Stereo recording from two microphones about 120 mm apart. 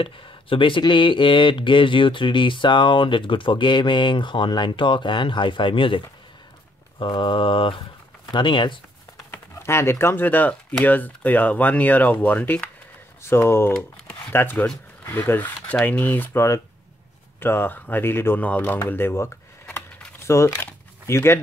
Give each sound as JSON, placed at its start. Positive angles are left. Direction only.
{"t": 0.0, "sound": "speech", "side_deg": 45}
{"t": 9.3, "sound": "speech", "side_deg": 20}
{"t": 20.2, "sound": "a sound", "side_deg": 25}